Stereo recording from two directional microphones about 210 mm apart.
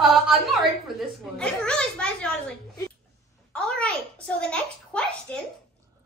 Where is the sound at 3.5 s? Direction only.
5° left (ahead or behind).